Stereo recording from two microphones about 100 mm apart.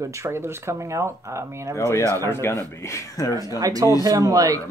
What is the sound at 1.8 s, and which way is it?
A man's voice, 30° left (ahead or behind).